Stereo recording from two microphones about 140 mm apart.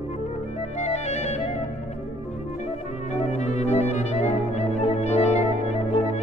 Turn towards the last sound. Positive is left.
turn(degrees=55)  # may be behind; listen again after turning